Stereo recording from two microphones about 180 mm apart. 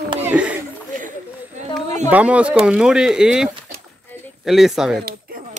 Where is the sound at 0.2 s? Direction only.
10° right (ahead or behind).